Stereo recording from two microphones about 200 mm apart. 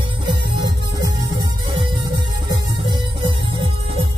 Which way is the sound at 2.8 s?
25° right (ahead or behind).